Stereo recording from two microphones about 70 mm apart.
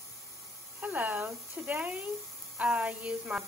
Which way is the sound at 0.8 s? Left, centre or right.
Right.